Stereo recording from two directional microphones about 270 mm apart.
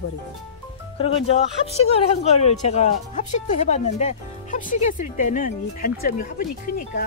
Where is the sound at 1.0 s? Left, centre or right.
Left.